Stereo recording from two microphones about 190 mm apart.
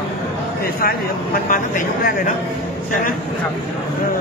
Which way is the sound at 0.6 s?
50° left (ahead or behind).